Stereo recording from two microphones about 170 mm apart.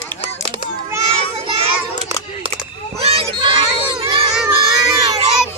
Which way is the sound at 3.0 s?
35° right (ahead or behind).